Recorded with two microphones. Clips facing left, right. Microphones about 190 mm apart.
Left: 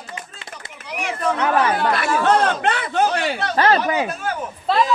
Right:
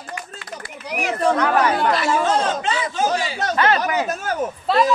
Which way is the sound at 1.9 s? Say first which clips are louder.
Left 1 dB; 55° left (ahead or behind).